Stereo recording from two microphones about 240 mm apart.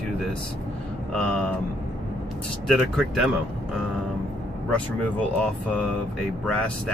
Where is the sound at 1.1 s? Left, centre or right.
Centre.